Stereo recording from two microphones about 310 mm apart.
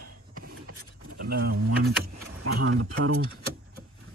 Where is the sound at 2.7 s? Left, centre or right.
Right.